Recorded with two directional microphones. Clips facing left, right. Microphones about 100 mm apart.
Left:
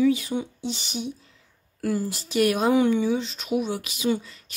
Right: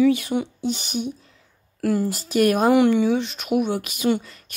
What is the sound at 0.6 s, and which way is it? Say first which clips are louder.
Speech: right 5 dB; 50° right (ahead or behind).